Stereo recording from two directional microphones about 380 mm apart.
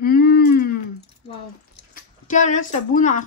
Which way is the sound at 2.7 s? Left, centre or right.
Centre.